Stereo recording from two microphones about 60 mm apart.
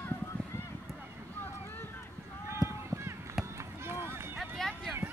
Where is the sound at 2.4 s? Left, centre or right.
Right.